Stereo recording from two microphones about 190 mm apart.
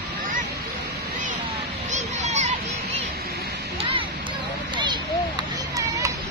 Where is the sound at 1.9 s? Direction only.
40° right (ahead or behind).